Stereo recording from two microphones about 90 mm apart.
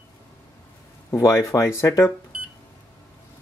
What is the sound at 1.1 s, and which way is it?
Speech, 35° left (ahead or behind).